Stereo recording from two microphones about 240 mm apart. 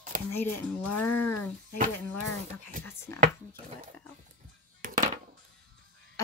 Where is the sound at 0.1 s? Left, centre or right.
Right.